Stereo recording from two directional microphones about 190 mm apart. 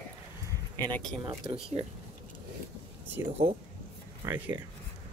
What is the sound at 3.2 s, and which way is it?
Speech, 15° right (ahead or behind).